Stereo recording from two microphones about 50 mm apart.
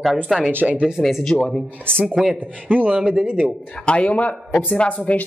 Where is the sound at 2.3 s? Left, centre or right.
Right.